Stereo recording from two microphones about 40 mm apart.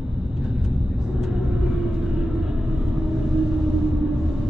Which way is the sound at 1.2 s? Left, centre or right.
Centre.